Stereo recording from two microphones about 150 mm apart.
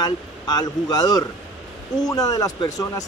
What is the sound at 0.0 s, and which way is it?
Speech, 25° left (ahead or behind).